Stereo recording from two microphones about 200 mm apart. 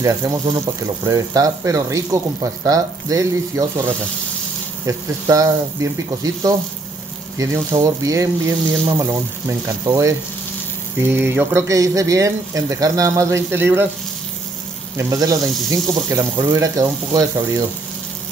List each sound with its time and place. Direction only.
0.0 s speech: 15° right (ahead or behind)
4.8 s speech: 15° right (ahead or behind)
7.3 s speech: 15° right (ahead or behind)
15.0 s speech: 15° right (ahead or behind)